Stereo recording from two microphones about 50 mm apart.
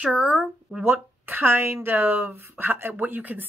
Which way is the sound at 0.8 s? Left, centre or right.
Right.